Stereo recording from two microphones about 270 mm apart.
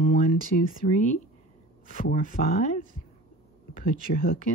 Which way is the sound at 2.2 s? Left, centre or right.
Left.